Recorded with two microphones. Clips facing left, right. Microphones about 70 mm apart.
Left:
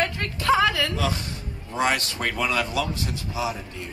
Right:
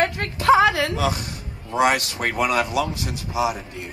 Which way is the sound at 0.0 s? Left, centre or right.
Right.